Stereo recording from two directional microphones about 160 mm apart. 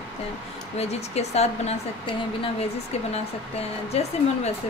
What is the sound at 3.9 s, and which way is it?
Speech, 40° left (ahead or behind).